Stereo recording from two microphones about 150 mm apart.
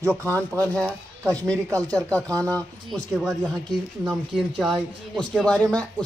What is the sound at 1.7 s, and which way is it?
Speech, 25° right (ahead or behind).